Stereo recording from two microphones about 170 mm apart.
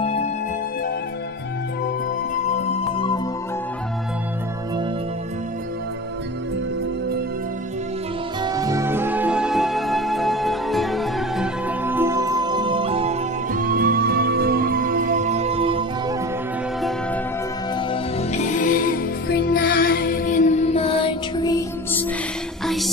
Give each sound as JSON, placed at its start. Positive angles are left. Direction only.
{"t": 0.0, "sound": "music", "side_deg": 35}
{"t": 8.5, "sound": "music", "side_deg": -20}
{"t": 11.8, "sound": "music", "side_deg": -15}
{"t": 13.5, "sound": "music", "side_deg": -55}
{"t": 18.3, "sound": "music", "side_deg": 45}